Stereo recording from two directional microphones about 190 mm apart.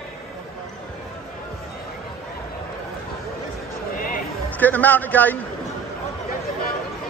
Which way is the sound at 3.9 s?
45° left (ahead or behind).